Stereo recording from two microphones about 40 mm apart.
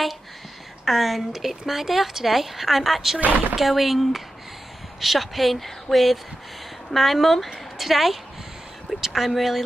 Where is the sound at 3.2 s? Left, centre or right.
Right.